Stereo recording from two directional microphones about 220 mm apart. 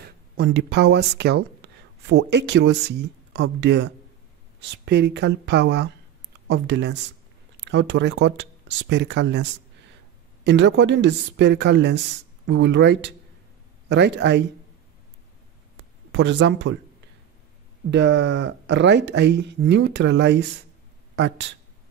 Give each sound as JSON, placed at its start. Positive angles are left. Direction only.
{"t": 0.0, "sound": "speech", "side_deg": -50}
{"t": 16.1, "sound": "speech", "side_deg": -55}
{"t": 17.9, "sound": "speech", "side_deg": -55}